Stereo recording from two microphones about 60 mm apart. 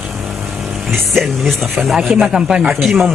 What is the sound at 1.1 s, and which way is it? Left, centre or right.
A man's voice, centre.